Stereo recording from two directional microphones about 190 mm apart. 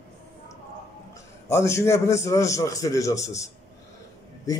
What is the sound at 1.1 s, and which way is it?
A man's voice, 15° left (ahead or behind).